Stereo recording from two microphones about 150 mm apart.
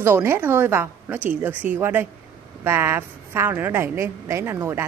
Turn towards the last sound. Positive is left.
turn(degrees=-15)  # may be behind; listen again after turning